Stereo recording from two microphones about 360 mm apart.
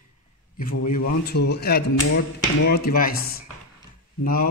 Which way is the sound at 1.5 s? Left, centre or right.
Left.